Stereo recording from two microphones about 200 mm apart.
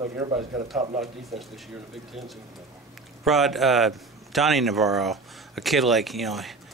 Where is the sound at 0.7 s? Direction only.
40° right (ahead or behind).